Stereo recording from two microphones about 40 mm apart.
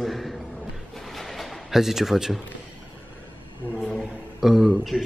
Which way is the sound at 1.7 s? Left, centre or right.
Centre.